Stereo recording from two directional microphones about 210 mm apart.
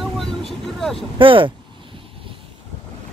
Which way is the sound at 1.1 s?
25° right (ahead or behind).